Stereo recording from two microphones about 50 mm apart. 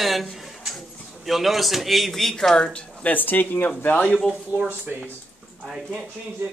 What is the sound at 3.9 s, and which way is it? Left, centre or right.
Speech, left.